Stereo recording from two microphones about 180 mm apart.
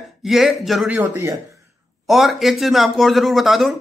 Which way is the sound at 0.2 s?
Centre (ahead or behind).